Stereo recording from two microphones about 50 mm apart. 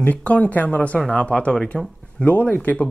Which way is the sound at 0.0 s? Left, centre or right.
Left.